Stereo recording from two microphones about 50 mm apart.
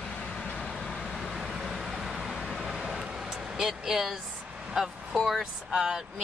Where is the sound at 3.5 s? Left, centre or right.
Centre.